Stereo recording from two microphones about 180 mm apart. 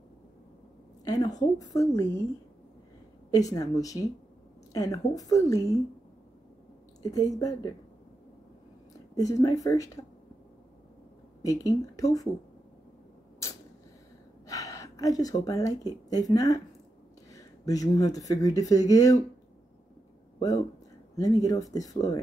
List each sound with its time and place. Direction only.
1.0 s a woman's voice: 20° left (ahead or behind)
3.3 s a woman's voice: 20° left (ahead or behind)
7.0 s a woman's voice: 20° left (ahead or behind)
9.1 s a woman's voice: 20° left (ahead or behind)
11.4 s a woman's voice: 20° left (ahead or behind)
14.5 s speech: 20° left (ahead or behind)
20.3 s a woman's voice: 20° left (ahead or behind)